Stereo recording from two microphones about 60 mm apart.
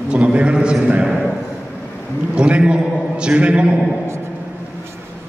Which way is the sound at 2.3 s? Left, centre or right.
Centre.